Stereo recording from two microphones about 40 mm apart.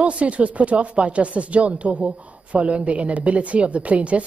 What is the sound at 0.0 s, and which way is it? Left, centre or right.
Speech, right.